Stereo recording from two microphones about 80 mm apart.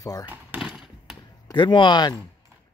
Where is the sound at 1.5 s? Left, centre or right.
Left.